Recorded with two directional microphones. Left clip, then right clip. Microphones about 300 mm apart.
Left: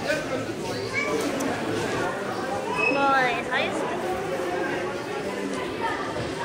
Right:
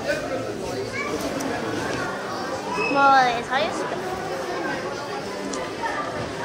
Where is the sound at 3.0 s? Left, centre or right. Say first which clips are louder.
Right 5 dB; right.